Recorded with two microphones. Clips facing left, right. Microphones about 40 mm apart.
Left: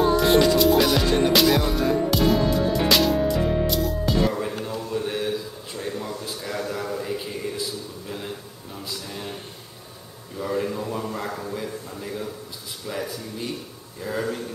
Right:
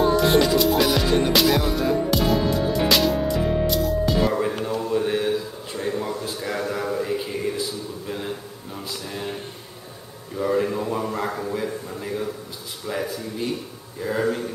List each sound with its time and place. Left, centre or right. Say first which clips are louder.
0.0 s music: even; centre
4.3 s music: right 4 dB; centre
4.6 s a sound: right 5 dB; centre
10.3 s a man's voice: right 4 dB; centre